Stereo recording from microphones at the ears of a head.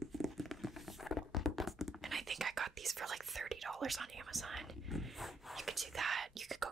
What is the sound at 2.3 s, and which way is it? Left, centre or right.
Whispering, right.